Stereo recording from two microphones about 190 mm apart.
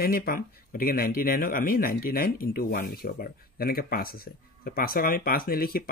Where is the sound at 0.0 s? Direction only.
50° left (ahead or behind).